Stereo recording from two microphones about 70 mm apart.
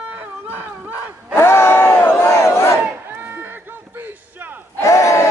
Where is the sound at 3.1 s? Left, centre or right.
Right.